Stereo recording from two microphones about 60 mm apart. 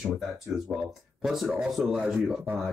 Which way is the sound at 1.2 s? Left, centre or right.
Centre.